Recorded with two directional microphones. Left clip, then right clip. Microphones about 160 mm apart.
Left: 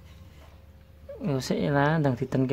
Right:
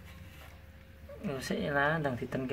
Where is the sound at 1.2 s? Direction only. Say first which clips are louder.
Left 7 dB; 70° left (ahead or behind).